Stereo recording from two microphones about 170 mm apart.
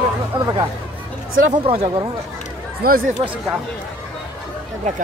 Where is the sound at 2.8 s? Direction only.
65° right (ahead or behind).